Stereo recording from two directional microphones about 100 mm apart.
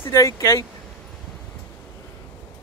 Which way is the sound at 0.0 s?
30° left (ahead or behind).